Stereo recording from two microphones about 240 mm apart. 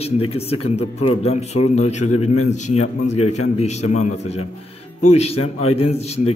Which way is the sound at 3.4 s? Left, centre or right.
Left.